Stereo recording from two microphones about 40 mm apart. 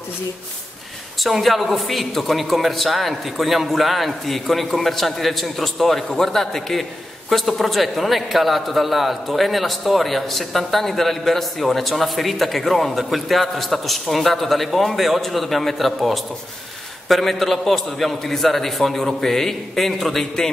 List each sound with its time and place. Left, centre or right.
1.2 s a man's voice: centre